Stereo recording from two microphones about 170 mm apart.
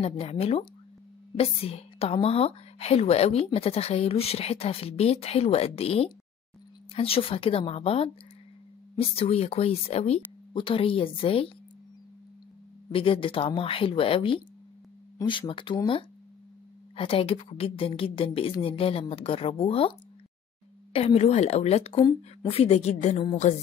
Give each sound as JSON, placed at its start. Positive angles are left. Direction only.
{"t": 0.0, "sound": "a woman's voice", "side_deg": 35}
{"t": 12.9, "sound": "a woman's voice", "side_deg": 30}
{"t": 20.9, "sound": "a woman's voice", "side_deg": 35}
{"t": 21.9, "sound": "speech", "side_deg": 25}
{"t": 22.5, "sound": "a woman's voice", "side_deg": 40}